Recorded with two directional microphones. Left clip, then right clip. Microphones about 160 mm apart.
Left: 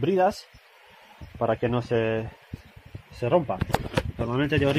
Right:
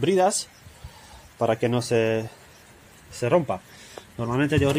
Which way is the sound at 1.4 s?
25° right (ahead or behind).